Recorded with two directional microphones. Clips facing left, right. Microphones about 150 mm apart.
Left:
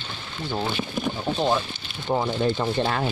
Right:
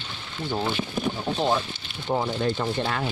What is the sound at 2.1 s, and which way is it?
Speech, 5° left (ahead or behind).